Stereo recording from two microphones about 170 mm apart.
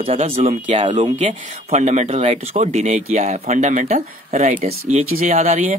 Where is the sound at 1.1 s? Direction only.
45° right (ahead or behind).